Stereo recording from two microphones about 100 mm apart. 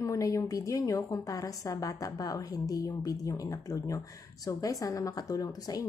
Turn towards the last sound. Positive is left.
turn(degrees=35)  # may be behind; listen again after turning